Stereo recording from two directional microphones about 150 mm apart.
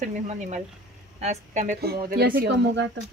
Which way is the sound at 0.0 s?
55° right (ahead or behind).